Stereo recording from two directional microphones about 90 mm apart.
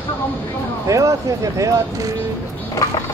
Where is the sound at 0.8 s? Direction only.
40° right (ahead or behind).